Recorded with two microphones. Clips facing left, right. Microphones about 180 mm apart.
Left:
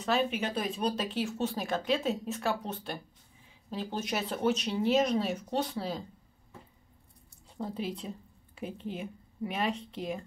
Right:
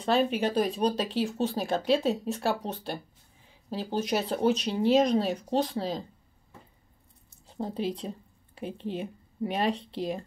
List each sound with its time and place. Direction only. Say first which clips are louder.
0.0 s speech: right 4 dB; 35° right (ahead or behind)
7.4 s speech: right 4 dB; 30° right (ahead or behind)